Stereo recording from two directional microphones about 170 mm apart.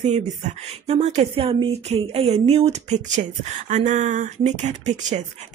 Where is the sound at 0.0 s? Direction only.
40° right (ahead or behind).